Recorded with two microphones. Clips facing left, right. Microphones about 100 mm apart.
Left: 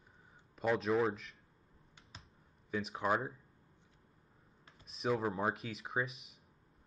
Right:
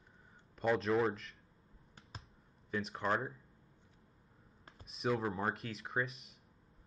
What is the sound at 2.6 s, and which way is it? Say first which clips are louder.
Speech: left 1 dB; 5° left (ahead or behind).